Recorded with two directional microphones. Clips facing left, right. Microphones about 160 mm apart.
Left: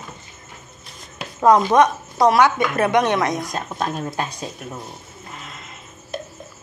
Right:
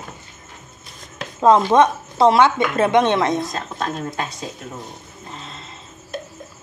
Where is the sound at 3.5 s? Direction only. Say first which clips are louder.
Left 1 dB; 10° left (ahead or behind).